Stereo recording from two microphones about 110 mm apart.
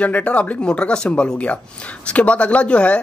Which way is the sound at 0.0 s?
10° left (ahead or behind).